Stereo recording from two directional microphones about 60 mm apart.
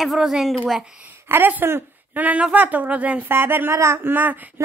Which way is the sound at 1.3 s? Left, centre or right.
Right.